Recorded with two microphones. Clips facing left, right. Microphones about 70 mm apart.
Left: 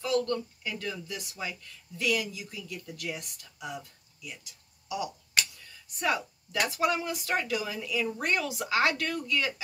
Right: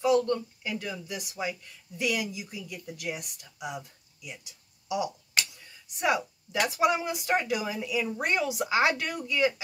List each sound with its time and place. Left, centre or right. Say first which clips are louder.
0.0 s speech: right 4 dB; centre
4.8 s a sound: right 4 dB; centre
6.6 s speech: right 3 dB; centre